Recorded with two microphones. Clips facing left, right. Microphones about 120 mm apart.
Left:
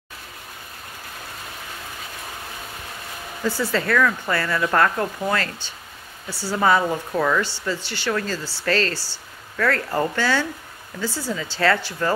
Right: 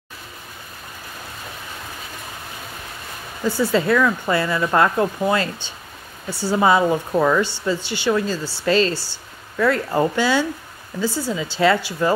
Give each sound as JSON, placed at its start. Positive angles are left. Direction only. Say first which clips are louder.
{"t": 3.4, "sound": "speech", "louder": "right 4 dB", "side_deg": -15}